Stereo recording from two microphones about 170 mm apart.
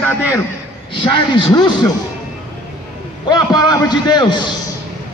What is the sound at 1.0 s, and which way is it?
Speech, 25° left (ahead or behind).